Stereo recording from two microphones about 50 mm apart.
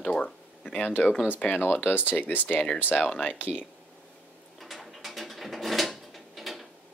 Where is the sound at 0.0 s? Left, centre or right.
Centre.